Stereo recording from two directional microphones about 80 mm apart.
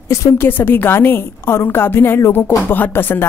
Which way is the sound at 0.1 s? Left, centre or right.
Left.